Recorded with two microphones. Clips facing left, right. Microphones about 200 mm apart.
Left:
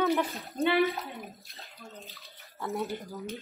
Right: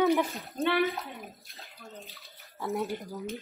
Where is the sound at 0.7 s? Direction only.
Centre (ahead or behind).